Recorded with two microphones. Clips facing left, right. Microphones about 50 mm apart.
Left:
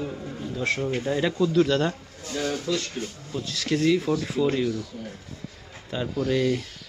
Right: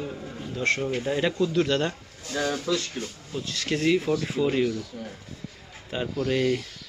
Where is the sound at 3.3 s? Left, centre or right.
Centre.